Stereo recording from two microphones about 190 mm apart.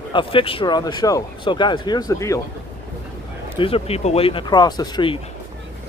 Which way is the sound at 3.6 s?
30° left (ahead or behind).